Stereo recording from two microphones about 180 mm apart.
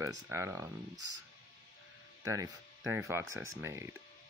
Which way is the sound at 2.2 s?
20° right (ahead or behind).